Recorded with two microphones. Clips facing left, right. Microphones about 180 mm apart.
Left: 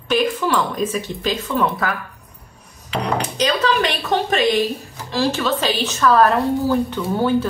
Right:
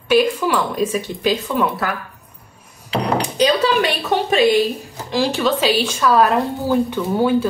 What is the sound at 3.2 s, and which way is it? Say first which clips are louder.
A woman's voice: right 4 dB; 10° right (ahead or behind).